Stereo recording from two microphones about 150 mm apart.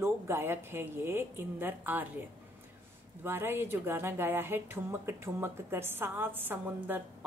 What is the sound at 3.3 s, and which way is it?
Speech, 15° right (ahead or behind).